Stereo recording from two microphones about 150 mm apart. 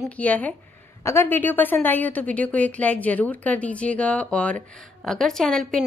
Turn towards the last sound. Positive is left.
turn(degrees=0)  # may be behind; listen again after turning